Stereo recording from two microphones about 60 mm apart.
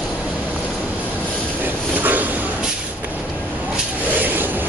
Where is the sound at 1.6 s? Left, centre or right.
Right.